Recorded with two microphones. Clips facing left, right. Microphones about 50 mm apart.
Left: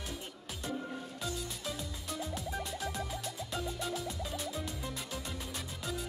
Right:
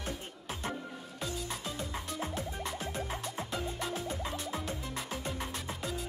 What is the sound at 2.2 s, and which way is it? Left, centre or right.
Music, right.